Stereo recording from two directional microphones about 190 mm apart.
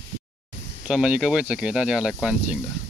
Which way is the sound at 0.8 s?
5° right (ahead or behind).